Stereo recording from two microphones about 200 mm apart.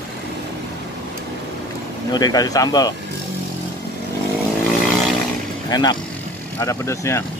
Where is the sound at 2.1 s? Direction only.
20° left (ahead or behind).